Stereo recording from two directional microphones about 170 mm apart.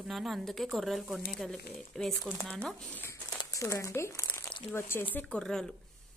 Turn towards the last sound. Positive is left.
turn(degrees=5)  # may be behind; listen again after turning